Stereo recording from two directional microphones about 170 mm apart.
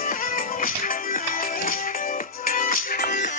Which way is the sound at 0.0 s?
55° left (ahead or behind).